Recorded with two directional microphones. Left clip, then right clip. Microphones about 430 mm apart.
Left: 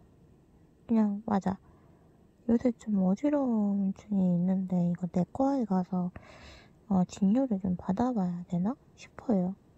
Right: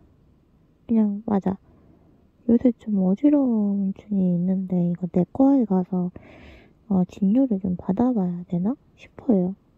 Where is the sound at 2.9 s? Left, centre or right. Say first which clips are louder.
Right 6 dB; centre.